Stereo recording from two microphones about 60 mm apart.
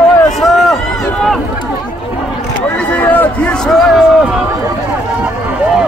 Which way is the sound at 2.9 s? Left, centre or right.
Left.